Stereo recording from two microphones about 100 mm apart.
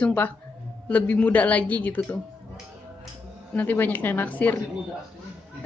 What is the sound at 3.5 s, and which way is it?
A woman's voice, 15° left (ahead or behind).